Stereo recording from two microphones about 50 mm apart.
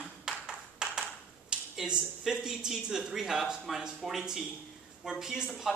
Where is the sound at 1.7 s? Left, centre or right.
Centre.